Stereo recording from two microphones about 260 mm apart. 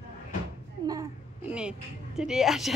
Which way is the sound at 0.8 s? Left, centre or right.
Centre.